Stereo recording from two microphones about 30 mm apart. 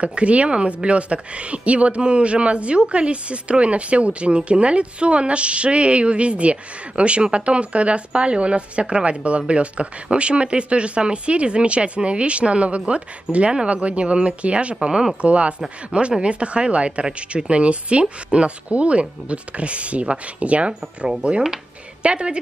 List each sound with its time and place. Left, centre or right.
0.0 s a woman's voice: right
14.8 s speech: right
15.2 s a woman's voice: right